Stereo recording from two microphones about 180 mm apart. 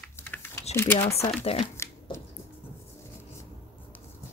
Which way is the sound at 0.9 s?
35° left (ahead or behind).